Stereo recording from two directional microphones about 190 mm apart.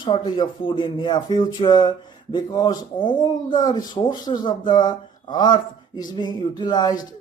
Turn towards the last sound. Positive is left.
turn(degrees=20)  # may be behind; listen again after turning